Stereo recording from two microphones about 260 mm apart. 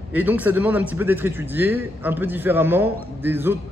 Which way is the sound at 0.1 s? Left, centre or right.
Centre.